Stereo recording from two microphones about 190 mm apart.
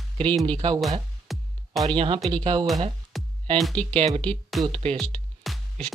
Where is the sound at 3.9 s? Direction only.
30° right (ahead or behind).